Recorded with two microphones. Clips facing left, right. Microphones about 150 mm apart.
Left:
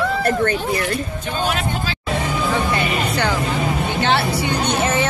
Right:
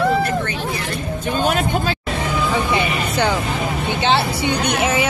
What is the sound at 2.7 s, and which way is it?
Vehicle, 20° right (ahead or behind).